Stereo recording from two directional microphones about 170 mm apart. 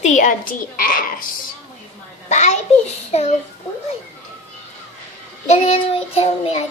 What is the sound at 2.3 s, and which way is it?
A woman's voice, 45° left (ahead or behind).